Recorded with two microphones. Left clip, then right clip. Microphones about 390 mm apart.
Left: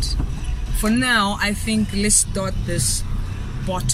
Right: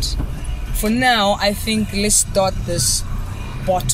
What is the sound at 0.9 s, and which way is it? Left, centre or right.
Speech, right.